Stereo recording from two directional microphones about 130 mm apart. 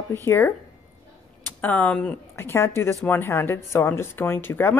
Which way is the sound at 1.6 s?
10° left (ahead or behind).